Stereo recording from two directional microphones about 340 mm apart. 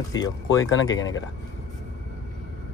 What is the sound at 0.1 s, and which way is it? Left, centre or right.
Speech, centre.